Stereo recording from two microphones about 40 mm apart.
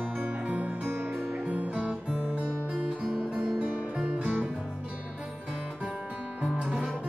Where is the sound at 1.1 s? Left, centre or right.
Right.